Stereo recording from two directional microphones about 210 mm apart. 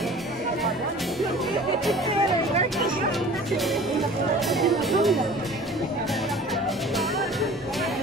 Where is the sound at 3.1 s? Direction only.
Centre (ahead or behind).